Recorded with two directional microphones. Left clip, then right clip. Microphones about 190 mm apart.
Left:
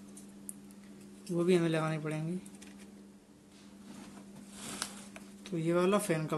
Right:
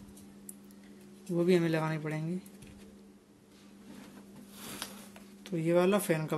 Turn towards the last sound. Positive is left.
turn(degrees=-10)  # may be behind; listen again after turning